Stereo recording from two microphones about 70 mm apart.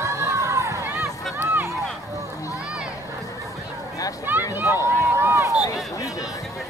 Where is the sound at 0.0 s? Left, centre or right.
Right.